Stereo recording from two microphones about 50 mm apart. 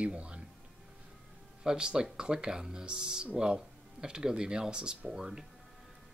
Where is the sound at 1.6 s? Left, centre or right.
Centre.